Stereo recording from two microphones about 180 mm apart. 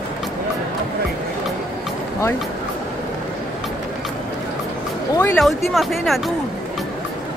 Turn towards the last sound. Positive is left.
turn(degrees=0)  # may be behind; listen again after turning